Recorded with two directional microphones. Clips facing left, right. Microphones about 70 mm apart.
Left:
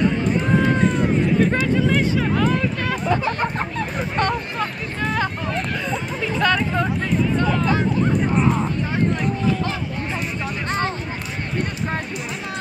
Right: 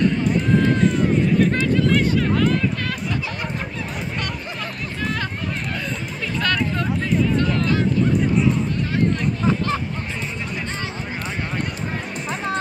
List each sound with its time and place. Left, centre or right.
0.6 s run: centre
3.1 s speech: left
4.2 s hubbub: left
6.4 s a sound: centre
7.4 s hubbub: centre